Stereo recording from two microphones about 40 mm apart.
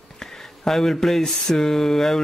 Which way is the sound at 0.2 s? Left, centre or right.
Centre.